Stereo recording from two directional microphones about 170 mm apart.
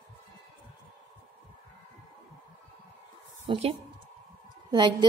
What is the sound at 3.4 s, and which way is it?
Speech, 30° right (ahead or behind).